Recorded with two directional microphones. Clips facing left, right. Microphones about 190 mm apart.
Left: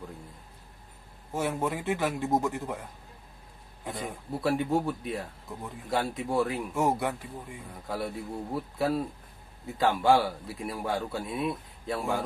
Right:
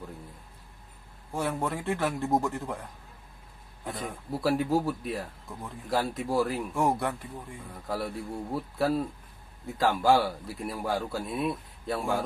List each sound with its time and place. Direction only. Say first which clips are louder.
1.3 s speech: left 1 dB; 20° left (ahead or behind)
2.2 s speech: even; centre (ahead or behind)
3.8 s speech: even; centre (ahead or behind)
7.9 s speech: right 1 dB; centre (ahead or behind)